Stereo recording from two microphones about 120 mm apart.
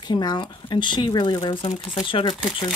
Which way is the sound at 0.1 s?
35° left (ahead or behind).